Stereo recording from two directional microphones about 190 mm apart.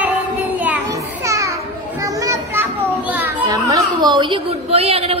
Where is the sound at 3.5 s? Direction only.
20° right (ahead or behind).